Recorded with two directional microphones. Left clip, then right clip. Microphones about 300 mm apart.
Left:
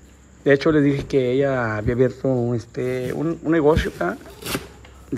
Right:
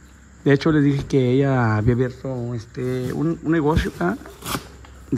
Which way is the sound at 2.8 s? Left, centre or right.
Centre.